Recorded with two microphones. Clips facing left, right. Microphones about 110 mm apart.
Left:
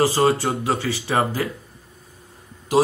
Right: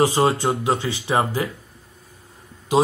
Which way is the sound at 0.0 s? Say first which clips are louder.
Even; 20° right (ahead or behind).